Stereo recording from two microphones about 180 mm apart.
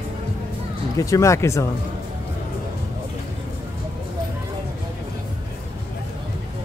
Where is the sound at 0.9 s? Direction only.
20° left (ahead or behind).